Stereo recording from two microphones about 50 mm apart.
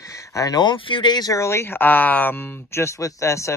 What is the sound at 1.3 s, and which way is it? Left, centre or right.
Speech, left.